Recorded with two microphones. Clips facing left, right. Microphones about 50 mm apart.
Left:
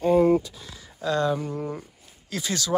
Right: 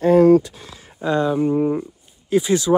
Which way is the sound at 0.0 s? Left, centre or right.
Right.